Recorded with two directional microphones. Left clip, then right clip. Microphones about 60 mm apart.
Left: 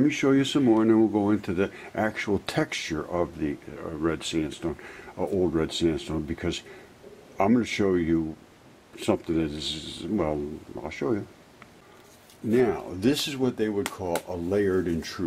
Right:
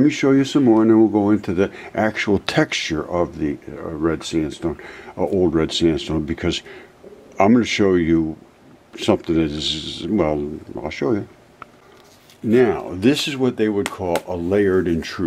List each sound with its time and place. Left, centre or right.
0.0 s speech: centre
0.4 s speech: centre
1.7 s speech: right
3.7 s speech: centre
4.6 s speech: centre
12.4 s speech: centre